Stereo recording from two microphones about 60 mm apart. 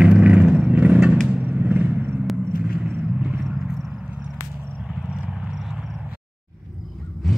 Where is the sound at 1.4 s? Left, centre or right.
Right.